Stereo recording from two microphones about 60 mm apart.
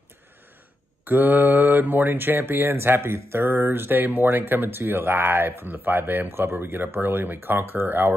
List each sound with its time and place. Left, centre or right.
1.0 s speech: right